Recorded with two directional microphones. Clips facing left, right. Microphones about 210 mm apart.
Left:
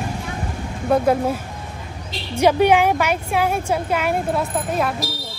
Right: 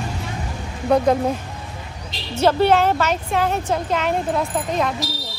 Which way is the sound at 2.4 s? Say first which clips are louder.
Left 1 dB; 15° left (ahead or behind).